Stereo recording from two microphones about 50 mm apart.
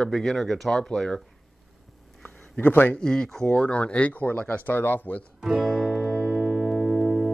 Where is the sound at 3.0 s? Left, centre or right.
Centre.